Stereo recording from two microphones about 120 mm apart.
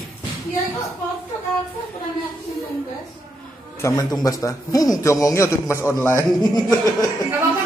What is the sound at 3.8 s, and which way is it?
A man's voice, 30° left (ahead or behind).